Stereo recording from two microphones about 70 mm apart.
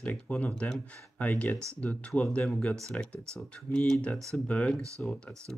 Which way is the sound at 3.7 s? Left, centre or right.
Centre.